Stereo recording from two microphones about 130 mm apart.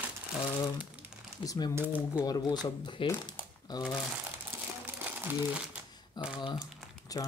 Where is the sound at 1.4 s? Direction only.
25° left (ahead or behind).